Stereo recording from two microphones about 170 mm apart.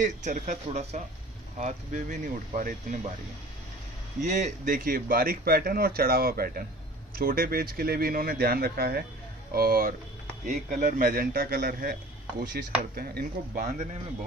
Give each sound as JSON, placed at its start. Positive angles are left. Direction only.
{"t": 0.0, "sound": "speech", "side_deg": -45}
{"t": 4.2, "sound": "speech", "side_deg": -45}
{"t": 10.4, "sound": "speech", "side_deg": -50}